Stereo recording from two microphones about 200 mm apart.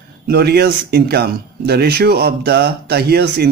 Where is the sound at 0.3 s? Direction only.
55° right (ahead or behind).